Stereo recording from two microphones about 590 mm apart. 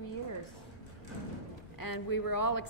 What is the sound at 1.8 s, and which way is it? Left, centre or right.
Speech, left.